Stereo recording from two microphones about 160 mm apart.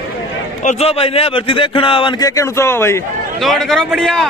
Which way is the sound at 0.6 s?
40° left (ahead or behind).